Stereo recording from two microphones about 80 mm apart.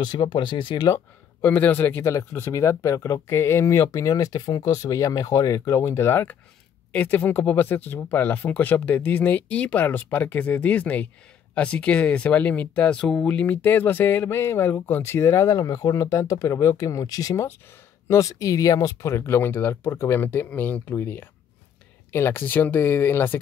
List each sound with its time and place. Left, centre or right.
0.0 s speech: left
1.4 s speech: centre
2.5 s speech: left; by 13.4 s centre
13.4 s speech: left